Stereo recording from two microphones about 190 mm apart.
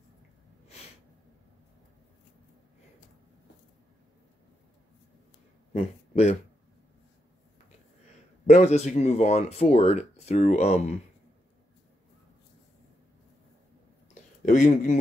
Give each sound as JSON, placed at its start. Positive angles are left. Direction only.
{"t": 5.7, "sound": "a sound", "side_deg": 35}
{"t": 8.5, "sound": "speech", "side_deg": 35}
{"t": 14.4, "sound": "speech", "side_deg": 40}